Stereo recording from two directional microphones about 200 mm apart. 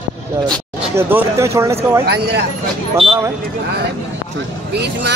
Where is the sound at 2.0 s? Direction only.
55° right (ahead or behind).